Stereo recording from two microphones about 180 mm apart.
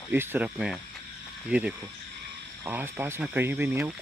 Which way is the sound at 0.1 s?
10° right (ahead or behind).